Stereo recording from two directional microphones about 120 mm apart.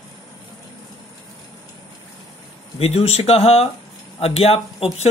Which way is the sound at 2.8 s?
60° left (ahead or behind).